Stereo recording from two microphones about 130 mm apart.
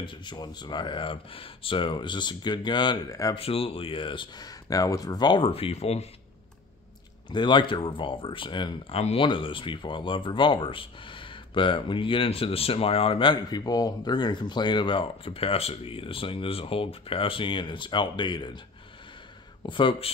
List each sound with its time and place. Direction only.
0.0 s speech: 35° left (ahead or behind)
3.3 s speech: 50° left (ahead or behind)
5.5 s speech: 50° left (ahead or behind)
7.2 s speech: 35° left (ahead or behind)
19.6 s speech: 40° left (ahead or behind)